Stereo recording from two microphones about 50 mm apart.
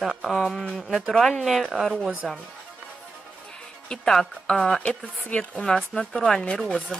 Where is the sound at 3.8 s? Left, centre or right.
Centre.